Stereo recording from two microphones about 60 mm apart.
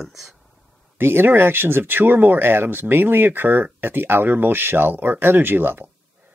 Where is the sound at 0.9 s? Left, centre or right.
Right.